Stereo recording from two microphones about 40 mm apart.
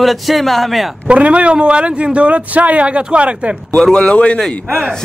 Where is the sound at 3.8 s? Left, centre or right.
Left.